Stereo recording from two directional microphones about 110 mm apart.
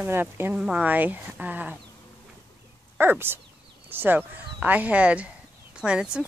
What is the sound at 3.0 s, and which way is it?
Speech, 20° right (ahead or behind).